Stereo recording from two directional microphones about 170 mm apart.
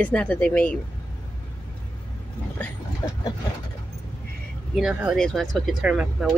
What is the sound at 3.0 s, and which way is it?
Vehicle, 25° left (ahead or behind).